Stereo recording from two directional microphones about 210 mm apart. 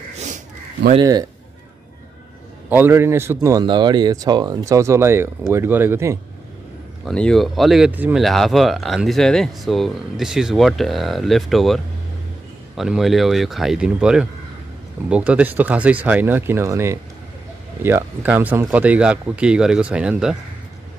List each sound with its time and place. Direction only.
0.9 s speech: 20° right (ahead or behind)
2.7 s speech: 10° right (ahead or behind)
7.1 s speech: 5° left (ahead or behind)